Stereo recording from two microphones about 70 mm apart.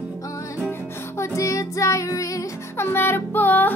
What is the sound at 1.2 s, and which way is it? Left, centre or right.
Music, left.